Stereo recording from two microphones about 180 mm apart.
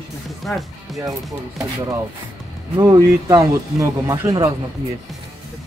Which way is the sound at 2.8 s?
20° right (ahead or behind).